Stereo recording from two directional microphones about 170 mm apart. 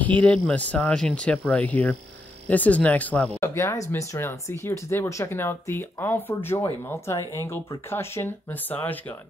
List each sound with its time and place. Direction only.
0.0 s speech: 10° left (ahead or behind)